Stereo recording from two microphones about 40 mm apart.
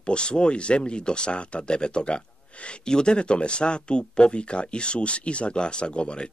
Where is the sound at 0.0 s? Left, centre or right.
Left.